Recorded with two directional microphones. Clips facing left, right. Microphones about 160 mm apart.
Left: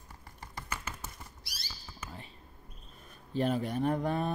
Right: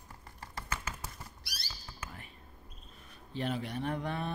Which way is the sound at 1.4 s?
65° right (ahead or behind).